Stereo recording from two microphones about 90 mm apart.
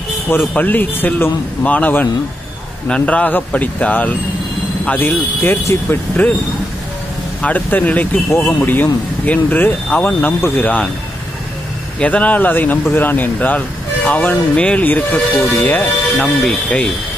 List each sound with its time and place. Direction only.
0.6 s speech: 20° left (ahead or behind)
7.4 s speech: 15° left (ahead or behind)
8.3 s speech: 30° left (ahead or behind)
12.0 s speech: 15° left (ahead or behind)
16.4 s speech: 5° left (ahead or behind)